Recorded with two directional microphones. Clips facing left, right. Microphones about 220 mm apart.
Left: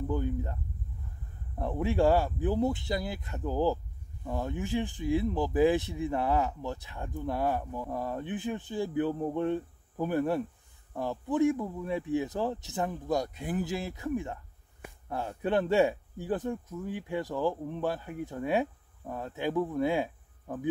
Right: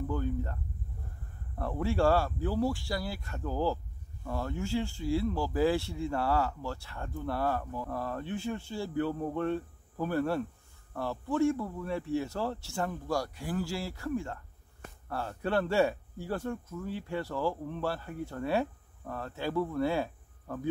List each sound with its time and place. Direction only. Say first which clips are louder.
0.1 s speech: left 3 dB; 15° left (ahead or behind)
1.6 s speech: left 2 dB; 20° left (ahead or behind)